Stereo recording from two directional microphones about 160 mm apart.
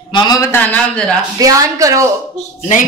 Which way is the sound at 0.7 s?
5° left (ahead or behind).